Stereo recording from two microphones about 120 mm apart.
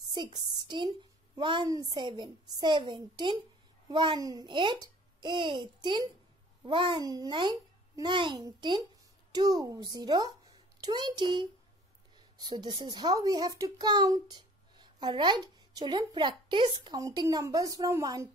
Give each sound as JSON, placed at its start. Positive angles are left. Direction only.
{"t": 0.1, "sound": "a woman's voice", "side_deg": -40}
{"t": 6.6, "sound": "babbling", "side_deg": -45}
{"t": 7.1, "sound": "a child's voice", "side_deg": -30}